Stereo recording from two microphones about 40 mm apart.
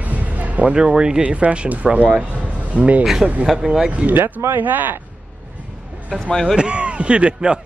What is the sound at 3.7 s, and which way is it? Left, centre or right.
Speech, centre.